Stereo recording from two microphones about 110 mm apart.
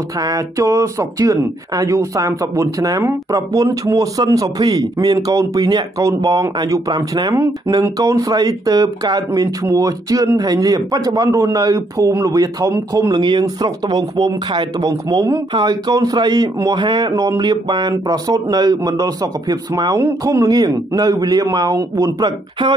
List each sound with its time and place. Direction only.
0.2 s speech: 30° right (ahead or behind)
17.1 s speech: 30° right (ahead or behind)
17.4 s speech: 40° right (ahead or behind)
22.2 s speech: 40° right (ahead or behind)